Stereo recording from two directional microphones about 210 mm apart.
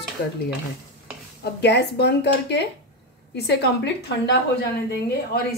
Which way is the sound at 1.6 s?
55° left (ahead or behind).